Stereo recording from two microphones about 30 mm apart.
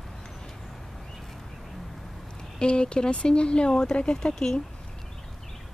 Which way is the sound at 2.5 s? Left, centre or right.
Left.